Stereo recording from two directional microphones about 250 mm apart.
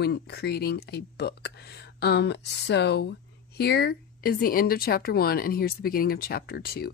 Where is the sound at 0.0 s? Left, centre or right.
Left.